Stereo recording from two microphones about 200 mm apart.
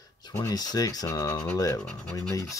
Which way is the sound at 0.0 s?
20° left (ahead or behind).